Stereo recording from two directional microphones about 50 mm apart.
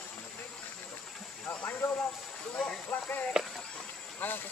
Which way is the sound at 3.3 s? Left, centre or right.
Centre.